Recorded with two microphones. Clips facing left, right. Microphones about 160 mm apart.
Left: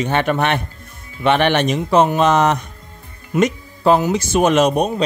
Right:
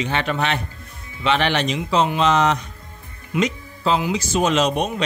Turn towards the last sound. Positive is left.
turn(degrees=50)  # may be behind; listen again after turning